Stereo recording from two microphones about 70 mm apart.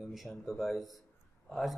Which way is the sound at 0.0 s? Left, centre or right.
Centre.